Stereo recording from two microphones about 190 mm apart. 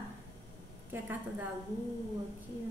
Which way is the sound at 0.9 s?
10° right (ahead or behind).